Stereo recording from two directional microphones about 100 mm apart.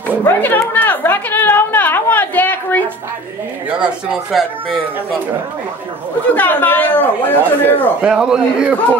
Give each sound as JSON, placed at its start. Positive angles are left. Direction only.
{"t": 0.2, "sound": "a sound", "side_deg": 20}
{"t": 3.8, "sound": "speech", "side_deg": 0}
{"t": 6.3, "sound": "a man's voice", "side_deg": 15}
{"t": 8.0, "sound": "a man's voice", "side_deg": -10}